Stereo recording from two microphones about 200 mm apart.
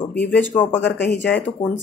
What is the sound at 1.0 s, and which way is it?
Speech, 55° left (ahead or behind).